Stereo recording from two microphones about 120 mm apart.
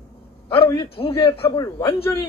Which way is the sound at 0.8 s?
50° left (ahead or behind).